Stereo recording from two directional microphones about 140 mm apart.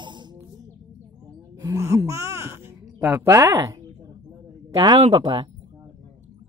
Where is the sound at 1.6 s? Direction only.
20° right (ahead or behind).